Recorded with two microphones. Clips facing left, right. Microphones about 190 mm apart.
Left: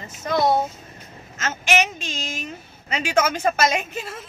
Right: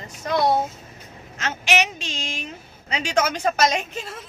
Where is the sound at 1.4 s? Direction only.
45° left (ahead or behind).